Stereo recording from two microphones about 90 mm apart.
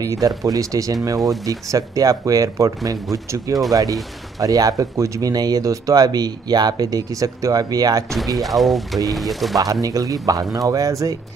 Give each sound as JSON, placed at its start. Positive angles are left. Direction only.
{"t": 0.0, "sound": "speech", "side_deg": -45}
{"t": 8.4, "sound": "speech", "side_deg": 0}
{"t": 9.6, "sound": "speech", "side_deg": -45}